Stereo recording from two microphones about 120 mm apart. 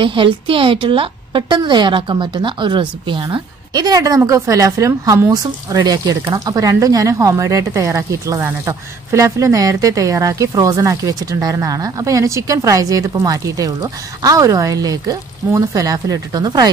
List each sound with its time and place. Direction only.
0.0 s a woman's voice: 45° right (ahead or behind)